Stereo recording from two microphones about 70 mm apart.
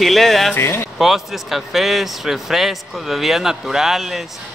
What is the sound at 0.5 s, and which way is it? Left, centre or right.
Speech, left.